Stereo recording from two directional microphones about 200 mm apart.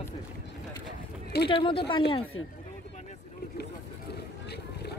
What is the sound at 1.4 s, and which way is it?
Speech, 25° left (ahead or behind).